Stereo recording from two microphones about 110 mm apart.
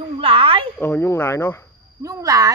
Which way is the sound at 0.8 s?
20° left (ahead or behind).